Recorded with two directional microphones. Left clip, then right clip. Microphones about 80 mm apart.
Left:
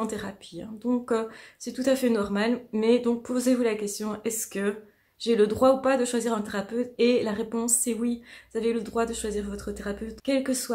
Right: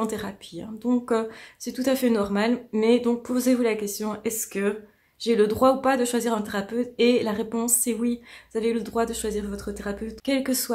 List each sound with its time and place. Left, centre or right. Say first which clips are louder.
0.0 s speech: right 3 dB; right
10.2 s a woman's voice: right 1 dB; right